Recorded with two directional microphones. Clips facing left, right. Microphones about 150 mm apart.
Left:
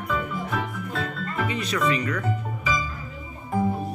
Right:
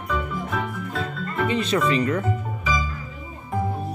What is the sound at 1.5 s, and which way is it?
Speech, 25° right (ahead or behind).